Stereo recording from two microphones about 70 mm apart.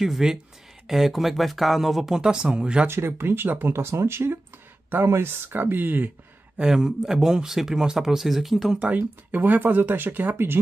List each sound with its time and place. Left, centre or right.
0.0 s speech: centre
2.9 s speech: right
6.6 s speech: centre
8.7 s speech: right